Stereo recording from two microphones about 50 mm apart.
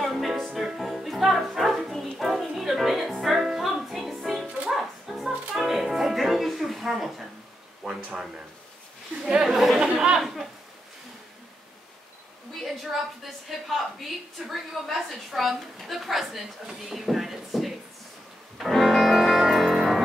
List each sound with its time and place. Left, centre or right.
0.0 s music: centre
7.8 s speech: right
9.4 s speech: centre
13.2 s a woman's voice: centre
16.9 s a sound: centre
18.6 s music: centre